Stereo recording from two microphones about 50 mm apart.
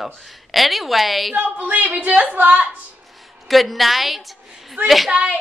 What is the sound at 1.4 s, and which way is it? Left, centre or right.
Speech, right.